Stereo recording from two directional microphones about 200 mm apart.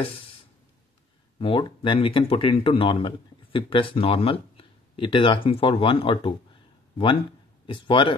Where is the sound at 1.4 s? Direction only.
25° left (ahead or behind).